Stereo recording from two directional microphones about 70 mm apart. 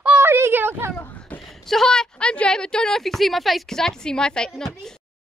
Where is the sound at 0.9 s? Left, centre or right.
Left.